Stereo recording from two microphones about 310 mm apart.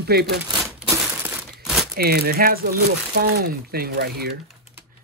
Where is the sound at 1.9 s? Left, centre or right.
Right.